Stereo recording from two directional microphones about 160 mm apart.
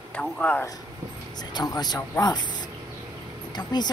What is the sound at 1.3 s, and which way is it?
A woman's voice, 25° left (ahead or behind).